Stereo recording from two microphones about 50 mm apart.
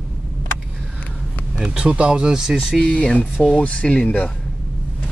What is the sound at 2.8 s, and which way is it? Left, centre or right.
Speech, left.